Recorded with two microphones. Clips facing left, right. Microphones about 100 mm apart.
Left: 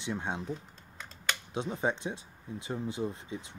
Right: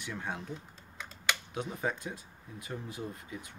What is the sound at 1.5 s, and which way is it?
Speech, 25° left (ahead or behind).